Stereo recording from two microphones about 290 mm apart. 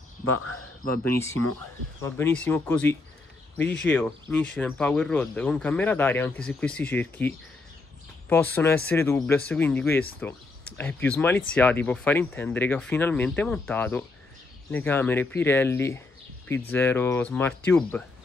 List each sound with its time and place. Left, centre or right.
0.2 s speech: left
0.8 s speech: left
2.0 s speech: centre